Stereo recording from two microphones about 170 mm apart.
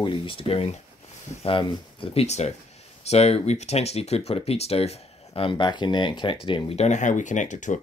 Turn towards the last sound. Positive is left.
turn(degrees=45)  # may be behind; listen again after turning